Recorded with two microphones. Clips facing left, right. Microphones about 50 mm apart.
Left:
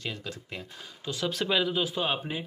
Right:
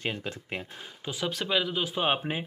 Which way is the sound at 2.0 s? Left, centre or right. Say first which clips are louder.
Right 3 dB; right.